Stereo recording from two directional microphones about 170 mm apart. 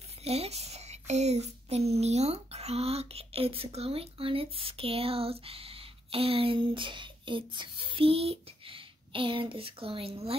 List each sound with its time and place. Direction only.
0.2 s speech: 40° right (ahead or behind)